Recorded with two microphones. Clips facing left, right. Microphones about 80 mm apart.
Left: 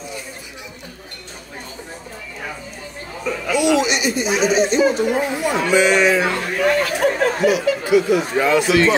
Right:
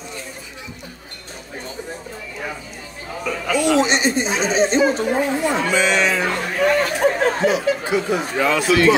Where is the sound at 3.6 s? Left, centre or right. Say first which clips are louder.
Even; right.